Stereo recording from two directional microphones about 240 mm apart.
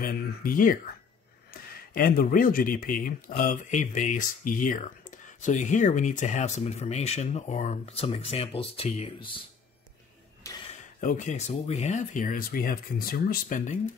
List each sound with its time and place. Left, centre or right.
0.0 s speech: left
11.0 s speech: left